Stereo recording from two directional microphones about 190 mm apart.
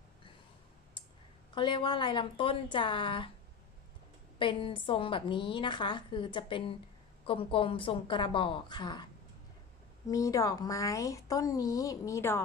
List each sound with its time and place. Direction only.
1.5 s a woman's voice: 25° left (ahead or behind)
4.4 s a woman's voice: 25° left (ahead or behind)
10.0 s a woman's voice: 15° left (ahead or behind)